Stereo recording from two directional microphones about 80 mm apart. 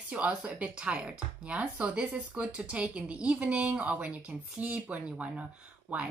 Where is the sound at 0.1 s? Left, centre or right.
Centre.